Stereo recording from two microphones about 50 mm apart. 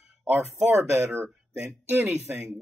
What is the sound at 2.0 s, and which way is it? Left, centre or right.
Speech, centre.